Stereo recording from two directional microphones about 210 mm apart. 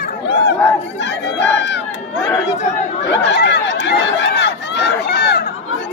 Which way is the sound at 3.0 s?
55° left (ahead or behind).